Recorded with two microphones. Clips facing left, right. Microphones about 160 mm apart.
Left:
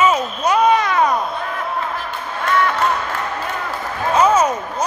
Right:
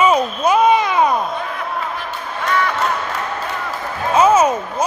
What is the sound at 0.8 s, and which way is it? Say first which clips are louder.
Baby cry: right 1 dB; 15° right (ahead or behind).